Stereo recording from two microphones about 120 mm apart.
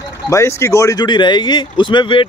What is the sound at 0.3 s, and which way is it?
Speech, 25° left (ahead or behind).